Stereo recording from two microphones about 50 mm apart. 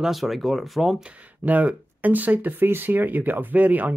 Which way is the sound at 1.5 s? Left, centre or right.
Right.